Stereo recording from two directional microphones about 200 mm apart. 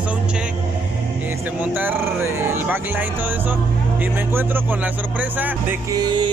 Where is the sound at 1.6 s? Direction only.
10° right (ahead or behind).